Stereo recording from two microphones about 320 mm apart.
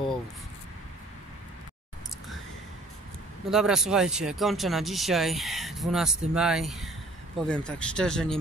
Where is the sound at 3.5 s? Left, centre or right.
Centre.